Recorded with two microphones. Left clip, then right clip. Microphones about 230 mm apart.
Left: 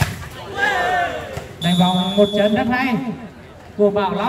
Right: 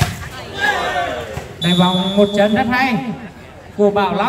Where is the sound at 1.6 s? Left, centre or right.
Centre.